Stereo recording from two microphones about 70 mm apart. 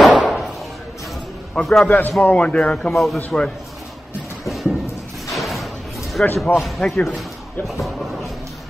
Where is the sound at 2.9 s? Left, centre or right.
Centre.